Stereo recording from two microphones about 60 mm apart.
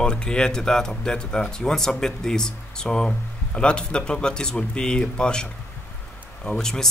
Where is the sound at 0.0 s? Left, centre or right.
Centre.